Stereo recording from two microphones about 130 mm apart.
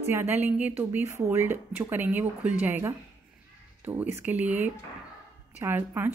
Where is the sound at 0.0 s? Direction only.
20° right (ahead or behind).